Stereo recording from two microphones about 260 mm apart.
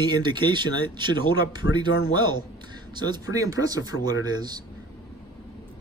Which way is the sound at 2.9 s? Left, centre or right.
Centre.